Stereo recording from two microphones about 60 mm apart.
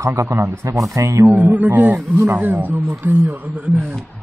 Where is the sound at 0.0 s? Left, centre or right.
Right.